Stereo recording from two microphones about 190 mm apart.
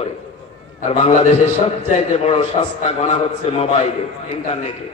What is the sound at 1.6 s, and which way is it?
A man's voice, 35° left (ahead or behind).